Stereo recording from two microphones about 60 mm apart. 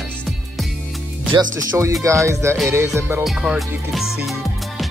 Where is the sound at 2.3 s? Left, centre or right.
Right.